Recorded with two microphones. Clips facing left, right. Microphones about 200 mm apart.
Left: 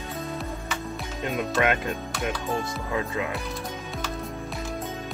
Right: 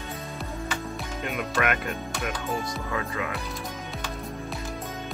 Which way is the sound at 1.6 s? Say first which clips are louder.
Left 2 dB; 25° left (ahead or behind).